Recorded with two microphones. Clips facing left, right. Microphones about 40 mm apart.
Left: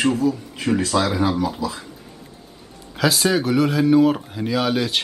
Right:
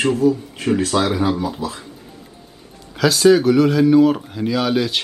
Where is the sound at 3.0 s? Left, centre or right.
Centre.